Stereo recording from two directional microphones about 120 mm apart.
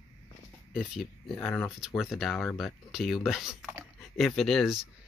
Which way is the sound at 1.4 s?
15° left (ahead or behind).